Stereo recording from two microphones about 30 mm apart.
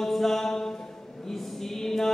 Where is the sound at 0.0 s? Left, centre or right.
Centre.